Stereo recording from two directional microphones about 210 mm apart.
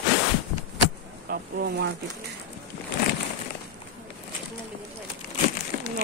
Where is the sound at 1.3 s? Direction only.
50° right (ahead or behind).